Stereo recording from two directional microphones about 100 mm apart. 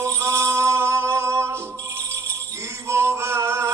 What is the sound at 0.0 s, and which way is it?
Music, 30° right (ahead or behind).